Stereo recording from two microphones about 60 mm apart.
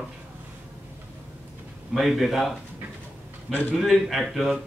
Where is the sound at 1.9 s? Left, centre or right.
Centre.